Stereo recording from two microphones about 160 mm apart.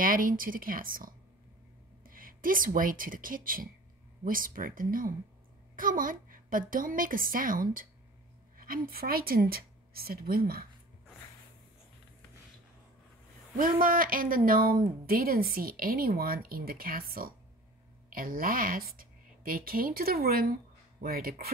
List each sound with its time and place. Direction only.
0.0 s speech: 60° right (ahead or behind)
13.6 s speech: 60° right (ahead or behind)